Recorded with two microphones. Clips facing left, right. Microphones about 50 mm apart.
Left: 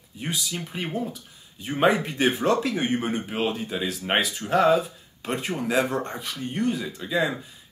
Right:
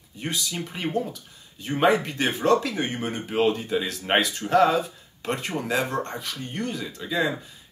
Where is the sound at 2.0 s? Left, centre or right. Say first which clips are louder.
Left 3 dB; centre.